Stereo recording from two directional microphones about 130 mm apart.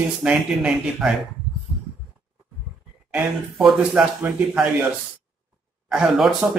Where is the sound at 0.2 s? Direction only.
5° right (ahead or behind).